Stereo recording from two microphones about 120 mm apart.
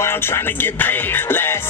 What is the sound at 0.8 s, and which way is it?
Music, 15° left (ahead or behind).